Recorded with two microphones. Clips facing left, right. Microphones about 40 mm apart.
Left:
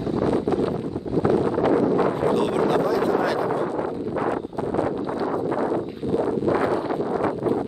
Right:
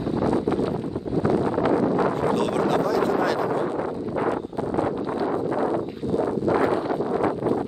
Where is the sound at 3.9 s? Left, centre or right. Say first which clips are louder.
Even; centre.